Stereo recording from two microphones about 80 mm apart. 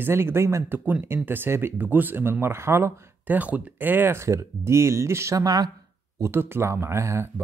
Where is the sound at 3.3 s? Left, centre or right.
Right.